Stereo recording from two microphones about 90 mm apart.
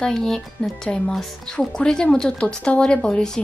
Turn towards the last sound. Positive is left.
turn(degrees=10)  # may be behind; listen again after turning